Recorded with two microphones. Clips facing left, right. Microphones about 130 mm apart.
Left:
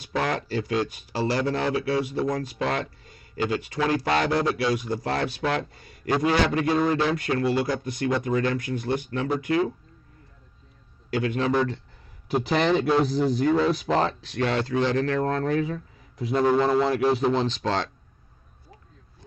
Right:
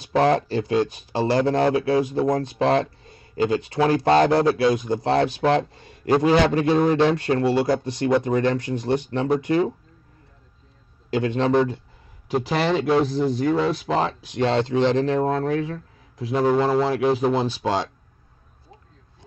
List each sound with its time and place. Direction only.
0.1 s a man's voice: 30° right (ahead or behind)
11.1 s speech: 25° right (ahead or behind)
12.4 s speech: centre (ahead or behind)
14.3 s a man's voice: 25° right (ahead or behind)